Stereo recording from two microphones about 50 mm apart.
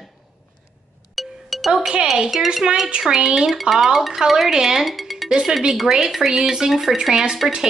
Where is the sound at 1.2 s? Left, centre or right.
Centre.